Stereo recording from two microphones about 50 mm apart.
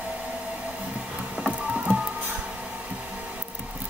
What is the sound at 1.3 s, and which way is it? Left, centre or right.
Printer, centre.